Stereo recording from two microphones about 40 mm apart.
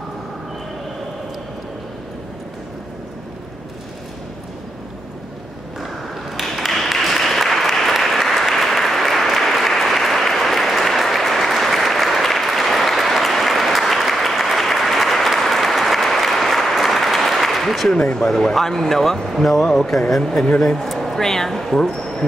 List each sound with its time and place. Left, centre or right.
6.5 s applause: centre
17.9 s speech: left
18.2 s speech: centre